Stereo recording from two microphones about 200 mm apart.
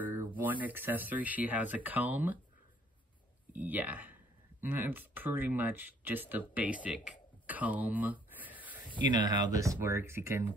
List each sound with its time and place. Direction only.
0.0 s a sound: 10° right (ahead or behind)
0.4 s speech: 10° right (ahead or behind)
3.5 s speech: 10° right (ahead or behind)
8.9 s speech: 25° right (ahead or behind)